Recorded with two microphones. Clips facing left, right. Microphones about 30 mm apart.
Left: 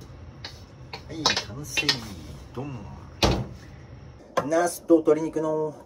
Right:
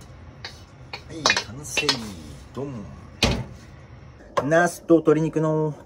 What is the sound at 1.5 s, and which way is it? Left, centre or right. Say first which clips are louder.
Speech: right 2 dB; right.